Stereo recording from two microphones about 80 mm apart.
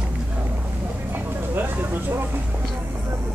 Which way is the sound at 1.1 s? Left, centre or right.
Right.